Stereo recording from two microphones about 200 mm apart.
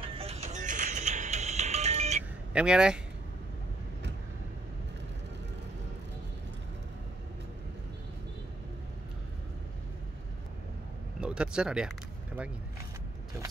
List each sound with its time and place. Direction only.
0.0 s music: 30° right (ahead or behind)
2.5 s speech: 5° right (ahead or behind)
11.1 s speech: 5° right (ahead or behind)